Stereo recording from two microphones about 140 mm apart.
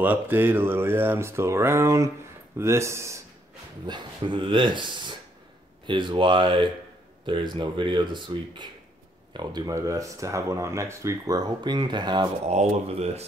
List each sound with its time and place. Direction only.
0.0 s speech: 15° right (ahead or behind)
3.8 s speech: 35° right (ahead or behind)
12.4 s speech: 50° right (ahead or behind)